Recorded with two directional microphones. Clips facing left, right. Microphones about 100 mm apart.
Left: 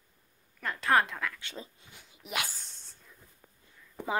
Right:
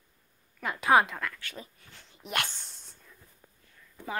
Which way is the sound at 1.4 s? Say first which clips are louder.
Even; 25° left (ahead or behind).